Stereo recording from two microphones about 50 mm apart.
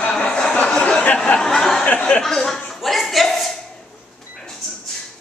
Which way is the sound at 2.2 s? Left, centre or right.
Centre.